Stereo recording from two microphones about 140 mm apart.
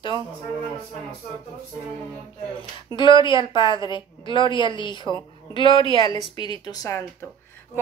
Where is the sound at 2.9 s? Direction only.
35° left (ahead or behind).